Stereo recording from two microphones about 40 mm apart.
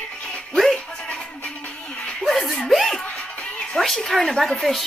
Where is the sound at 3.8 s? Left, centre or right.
Centre.